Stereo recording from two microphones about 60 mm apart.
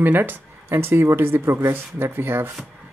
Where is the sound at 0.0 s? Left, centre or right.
Right.